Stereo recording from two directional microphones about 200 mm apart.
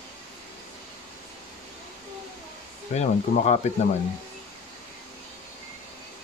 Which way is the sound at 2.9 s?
35° left (ahead or behind).